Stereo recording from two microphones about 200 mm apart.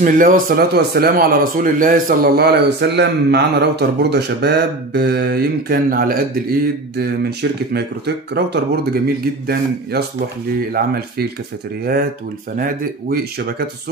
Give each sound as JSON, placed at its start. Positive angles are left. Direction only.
{"t": 0.0, "sound": "a man's voice", "side_deg": -45}
{"t": 12.5, "sound": "a man's voice", "side_deg": -45}